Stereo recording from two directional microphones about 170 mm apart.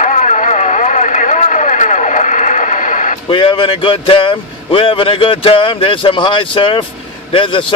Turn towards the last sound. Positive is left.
turn(degrees=30)  # may be behind; listen again after turning